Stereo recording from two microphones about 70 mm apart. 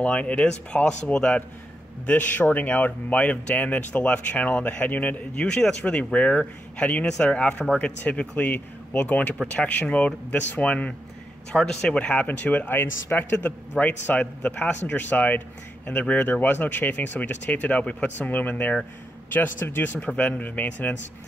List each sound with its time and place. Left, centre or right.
0.0 s speech: centre
19.6 s speech: left
20.0 s speech: centre